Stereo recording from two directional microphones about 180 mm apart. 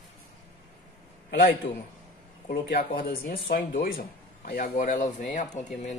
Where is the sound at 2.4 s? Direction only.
50° left (ahead or behind).